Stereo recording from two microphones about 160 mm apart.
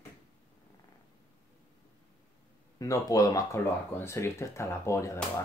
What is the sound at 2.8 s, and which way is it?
Speech, 20° left (ahead or behind).